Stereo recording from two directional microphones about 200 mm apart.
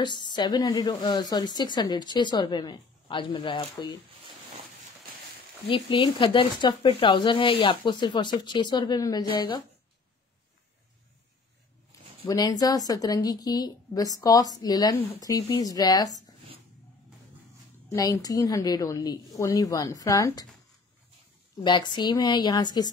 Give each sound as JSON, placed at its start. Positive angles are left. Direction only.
{"t": 0.0, "sound": "speech", "side_deg": 20}
{"t": 5.7, "sound": "speech", "side_deg": 25}
{"t": 12.3, "sound": "speech", "side_deg": 20}
{"t": 17.9, "sound": "a woman's voice", "side_deg": 15}
{"t": 21.6, "sound": "speech", "side_deg": 20}